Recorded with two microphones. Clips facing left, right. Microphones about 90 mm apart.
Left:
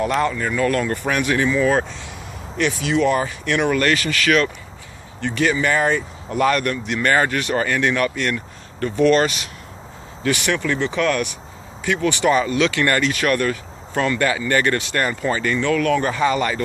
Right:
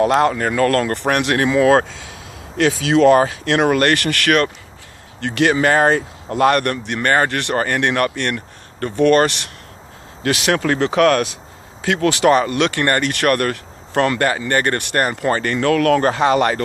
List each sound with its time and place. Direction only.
0.0 s speech: 75° right (ahead or behind)
2.5 s speech: 90° right
3.7 s speech: 60° right (ahead or behind)
5.3 s speech: 80° right; by 7.2 s 45° right (ahead or behind)
7.2 s speech: 60° right (ahead or behind)
10.2 s speech: 90° right
11.8 s speech: 90° right; by 13.1 s 45° right (ahead or behind)
13.1 s speech: 60° right (ahead or behind)
14.3 s speech: 45° right (ahead or behind)
15.8 s speech: 75° right (ahead or behind)